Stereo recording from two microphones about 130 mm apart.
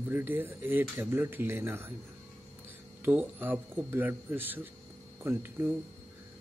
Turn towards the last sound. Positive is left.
turn(degrees=-15)  # may be behind; listen again after turning